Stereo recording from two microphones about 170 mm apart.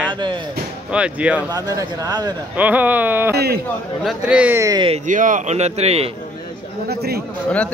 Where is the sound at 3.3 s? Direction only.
65° right (ahead or behind).